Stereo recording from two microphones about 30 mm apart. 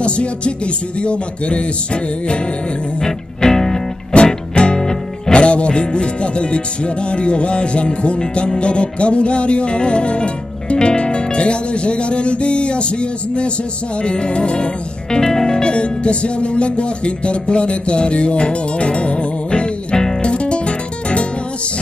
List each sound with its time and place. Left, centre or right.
0.0 s music: left
3.0 s music: centre
4.1 s music: left
4.6 s music: left
5.3 s music: left
15.1 s music: left
15.7 s music: left